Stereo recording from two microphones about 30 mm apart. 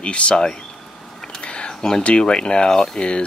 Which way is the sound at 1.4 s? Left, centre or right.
Left.